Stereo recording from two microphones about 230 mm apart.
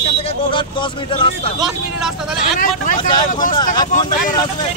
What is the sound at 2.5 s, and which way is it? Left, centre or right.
Speech, left.